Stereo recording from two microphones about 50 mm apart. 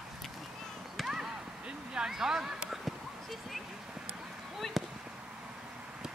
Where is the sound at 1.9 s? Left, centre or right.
Centre.